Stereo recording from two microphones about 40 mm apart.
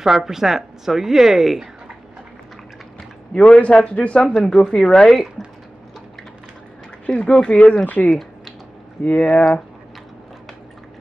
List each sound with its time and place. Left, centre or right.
0.0 s a woman's voice: centre
3.3 s a man's voice: left
4.6 s speech: centre
7.1 s a man's voice: left
7.8 s speech: left
8.1 s typing: centre
9.0 s speech: left